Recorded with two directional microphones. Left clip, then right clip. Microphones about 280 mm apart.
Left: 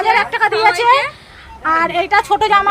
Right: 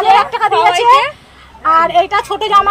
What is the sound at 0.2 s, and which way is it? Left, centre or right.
A woman's voice, centre.